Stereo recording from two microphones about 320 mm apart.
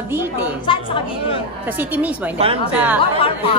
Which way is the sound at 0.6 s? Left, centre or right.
Centre.